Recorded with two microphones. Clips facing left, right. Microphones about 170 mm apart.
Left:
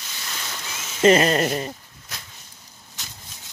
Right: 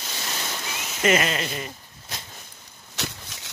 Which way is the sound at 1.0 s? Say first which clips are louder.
Left 6 dB; 35° left (ahead or behind).